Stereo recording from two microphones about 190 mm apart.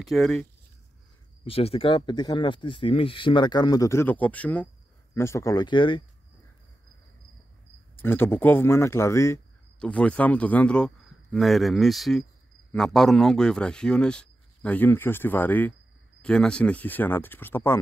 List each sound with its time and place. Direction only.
0.0 s speech: centre (ahead or behind)
1.4 s speech: 30° left (ahead or behind)
7.9 s speech: 10° left (ahead or behind)